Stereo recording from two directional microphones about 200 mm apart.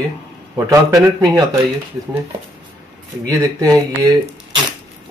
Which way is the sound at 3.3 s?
15° right (ahead or behind).